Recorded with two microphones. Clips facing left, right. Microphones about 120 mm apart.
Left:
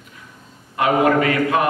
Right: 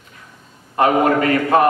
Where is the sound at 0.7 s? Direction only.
35° right (ahead or behind).